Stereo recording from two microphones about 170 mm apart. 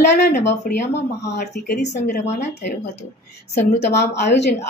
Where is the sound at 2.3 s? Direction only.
40° left (ahead or behind).